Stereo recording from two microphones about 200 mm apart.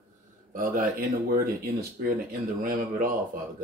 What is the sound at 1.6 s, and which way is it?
Speech, 45° right (ahead or behind).